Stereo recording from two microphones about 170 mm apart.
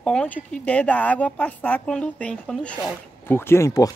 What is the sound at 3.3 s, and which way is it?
Speech, 15° left (ahead or behind).